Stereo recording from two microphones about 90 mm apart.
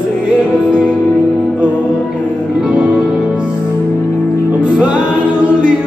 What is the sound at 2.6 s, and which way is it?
Music, 15° right (ahead or behind).